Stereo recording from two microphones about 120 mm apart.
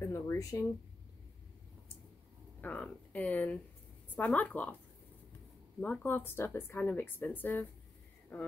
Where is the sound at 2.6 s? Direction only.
10° left (ahead or behind).